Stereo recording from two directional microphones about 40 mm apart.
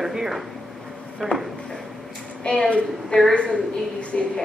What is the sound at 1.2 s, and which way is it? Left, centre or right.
Speech, left.